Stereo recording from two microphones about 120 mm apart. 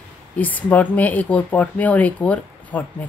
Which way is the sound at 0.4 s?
15° left (ahead or behind).